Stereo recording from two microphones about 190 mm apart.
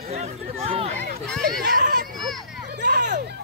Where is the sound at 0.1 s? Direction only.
35° right (ahead or behind).